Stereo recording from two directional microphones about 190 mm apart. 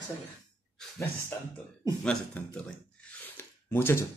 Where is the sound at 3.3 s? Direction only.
10° left (ahead or behind).